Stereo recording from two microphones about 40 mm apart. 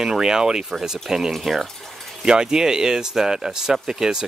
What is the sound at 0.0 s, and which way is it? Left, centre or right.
Speech, centre.